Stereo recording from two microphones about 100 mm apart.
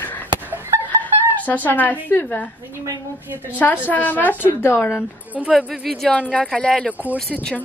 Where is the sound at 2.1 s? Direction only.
20° left (ahead or behind).